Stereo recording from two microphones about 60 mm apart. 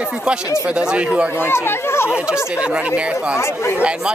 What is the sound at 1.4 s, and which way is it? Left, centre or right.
Speech, left.